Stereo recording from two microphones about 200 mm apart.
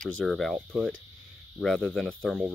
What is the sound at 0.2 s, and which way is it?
Speech, centre (ahead or behind).